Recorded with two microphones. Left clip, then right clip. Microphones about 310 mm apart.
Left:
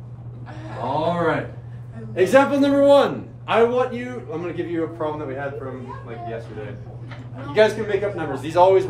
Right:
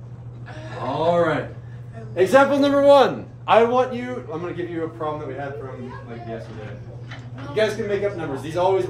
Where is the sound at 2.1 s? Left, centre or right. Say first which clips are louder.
Even; centre.